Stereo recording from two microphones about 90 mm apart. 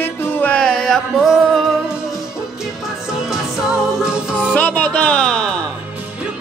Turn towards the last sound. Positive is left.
turn(degrees=10)  # may be behind; listen again after turning